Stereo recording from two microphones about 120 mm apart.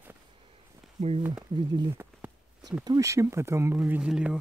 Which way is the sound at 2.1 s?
5° left (ahead or behind).